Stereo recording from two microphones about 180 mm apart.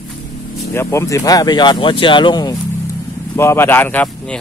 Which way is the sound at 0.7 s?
15° left (ahead or behind).